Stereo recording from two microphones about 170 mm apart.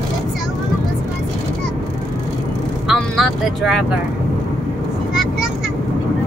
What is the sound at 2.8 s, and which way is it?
Vehicle, centre (ahead or behind).